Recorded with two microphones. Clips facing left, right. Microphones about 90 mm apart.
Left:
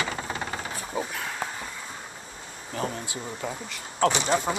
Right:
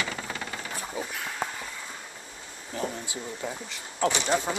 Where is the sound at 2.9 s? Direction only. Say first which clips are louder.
Left 2 dB; 20° right (ahead or behind).